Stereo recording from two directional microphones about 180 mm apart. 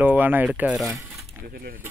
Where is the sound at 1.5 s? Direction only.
55° right (ahead or behind).